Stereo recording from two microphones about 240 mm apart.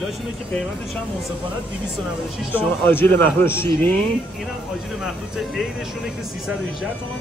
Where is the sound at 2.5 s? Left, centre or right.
Centre.